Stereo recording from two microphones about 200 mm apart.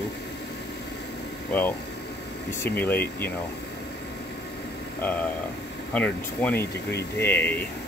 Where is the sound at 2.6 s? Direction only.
10° left (ahead or behind).